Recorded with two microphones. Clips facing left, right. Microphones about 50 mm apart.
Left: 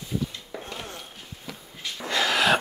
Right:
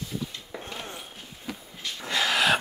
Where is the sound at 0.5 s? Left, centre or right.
Centre.